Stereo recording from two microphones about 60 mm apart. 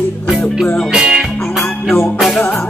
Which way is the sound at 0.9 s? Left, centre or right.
Centre.